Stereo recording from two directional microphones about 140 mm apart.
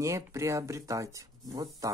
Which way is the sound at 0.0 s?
20° right (ahead or behind).